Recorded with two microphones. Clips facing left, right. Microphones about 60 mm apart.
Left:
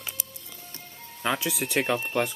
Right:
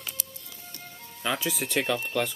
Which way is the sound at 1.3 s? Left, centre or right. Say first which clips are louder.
Right 1 dB; centre.